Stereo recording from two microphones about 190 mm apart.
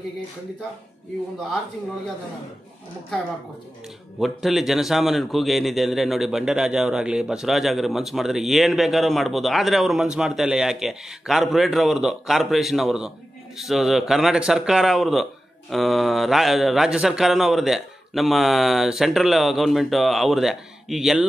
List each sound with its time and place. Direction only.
4.2 s a man's voice: centre (ahead or behind)